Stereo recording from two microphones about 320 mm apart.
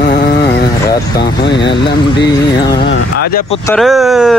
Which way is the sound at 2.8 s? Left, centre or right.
Left.